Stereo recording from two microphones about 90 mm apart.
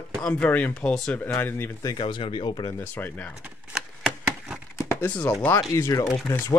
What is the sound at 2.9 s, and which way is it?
Speech, 20° left (ahead or behind).